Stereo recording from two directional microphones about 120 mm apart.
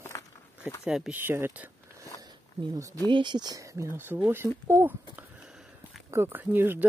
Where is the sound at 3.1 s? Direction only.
40° right (ahead or behind); by 6.8 s 15° right (ahead or behind).